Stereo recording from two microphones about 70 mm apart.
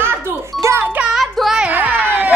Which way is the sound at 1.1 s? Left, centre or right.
Centre.